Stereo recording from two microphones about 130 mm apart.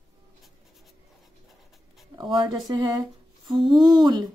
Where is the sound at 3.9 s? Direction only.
35° right (ahead or behind).